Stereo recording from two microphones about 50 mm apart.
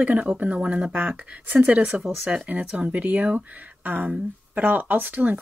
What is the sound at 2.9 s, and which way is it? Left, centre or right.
Speech, right.